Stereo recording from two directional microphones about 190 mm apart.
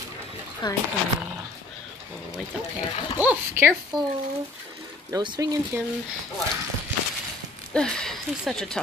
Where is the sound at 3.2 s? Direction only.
10° right (ahead or behind).